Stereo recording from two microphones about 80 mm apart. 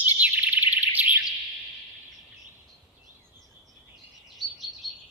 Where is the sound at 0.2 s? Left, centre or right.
Centre.